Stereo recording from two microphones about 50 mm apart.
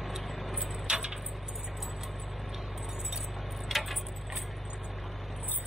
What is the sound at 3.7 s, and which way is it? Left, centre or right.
Tick-tock, centre.